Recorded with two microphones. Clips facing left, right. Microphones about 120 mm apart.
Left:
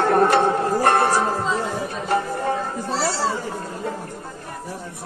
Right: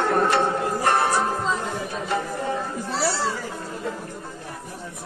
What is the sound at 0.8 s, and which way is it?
Choir, 50° left (ahead or behind).